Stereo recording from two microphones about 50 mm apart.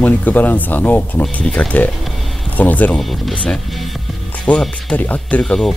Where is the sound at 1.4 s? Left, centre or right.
Left.